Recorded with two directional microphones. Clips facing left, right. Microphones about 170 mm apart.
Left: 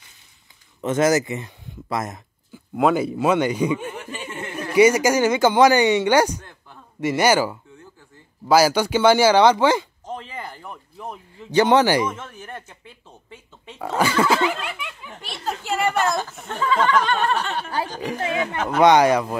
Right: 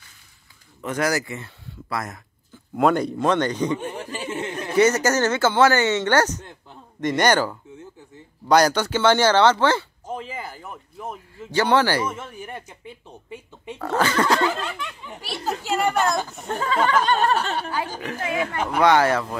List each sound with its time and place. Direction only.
0.7 s speech: 25° left (ahead or behind)
2.7 s speech: centre (ahead or behind)
3.8 s a sound: 30° right (ahead or behind)
4.3 s a sound: 20° right (ahead or behind)
4.7 s speech: 10° left (ahead or behind)
10.0 s a sound: 5° right (ahead or behind)
11.5 s speech: 20° left (ahead or behind)
12.1 s a sound: 10° right (ahead or behind)
13.7 s speech: 15° left (ahead or behind)
15.0 s speech: 5° right (ahead or behind)
16.4 s speech: 40° right (ahead or behind)
18.8 s speech: 20° left (ahead or behind)